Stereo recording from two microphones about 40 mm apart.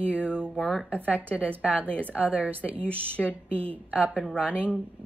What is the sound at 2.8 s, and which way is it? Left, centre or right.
Speech, left.